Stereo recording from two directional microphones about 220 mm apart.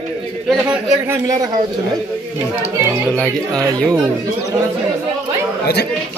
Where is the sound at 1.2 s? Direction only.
15° right (ahead or behind).